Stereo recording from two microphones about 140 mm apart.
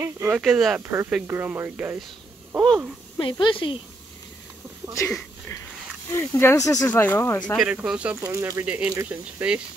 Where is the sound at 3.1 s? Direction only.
35° left (ahead or behind).